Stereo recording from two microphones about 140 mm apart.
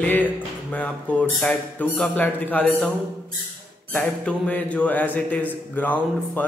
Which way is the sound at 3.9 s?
15° left (ahead or behind).